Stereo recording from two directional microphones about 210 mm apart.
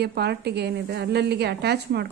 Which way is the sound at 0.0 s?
50° right (ahead or behind).